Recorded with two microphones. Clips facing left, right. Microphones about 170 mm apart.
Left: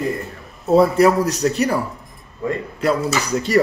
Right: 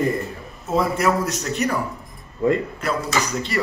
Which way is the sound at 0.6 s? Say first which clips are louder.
Left 7 dB; 35° left (ahead or behind).